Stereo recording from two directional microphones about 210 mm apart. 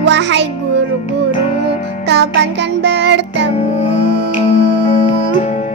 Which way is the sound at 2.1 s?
55° right (ahead or behind).